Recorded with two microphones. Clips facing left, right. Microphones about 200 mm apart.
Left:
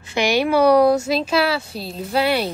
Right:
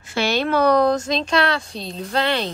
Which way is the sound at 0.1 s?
15° left (ahead or behind).